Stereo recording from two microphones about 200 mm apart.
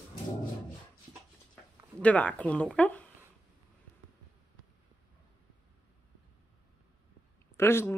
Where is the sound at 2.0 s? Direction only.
5° left (ahead or behind).